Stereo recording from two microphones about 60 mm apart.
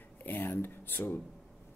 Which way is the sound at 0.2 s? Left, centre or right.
Left.